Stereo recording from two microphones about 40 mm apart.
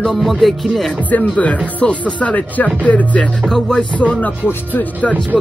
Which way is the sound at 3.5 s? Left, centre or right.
Centre.